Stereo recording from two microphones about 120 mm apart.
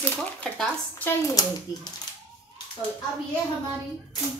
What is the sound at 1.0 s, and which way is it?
Speech, 30° left (ahead or behind).